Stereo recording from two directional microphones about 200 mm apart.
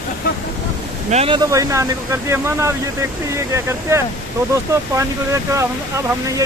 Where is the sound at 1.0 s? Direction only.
30° right (ahead or behind); by 4.0 s 15° right (ahead or behind).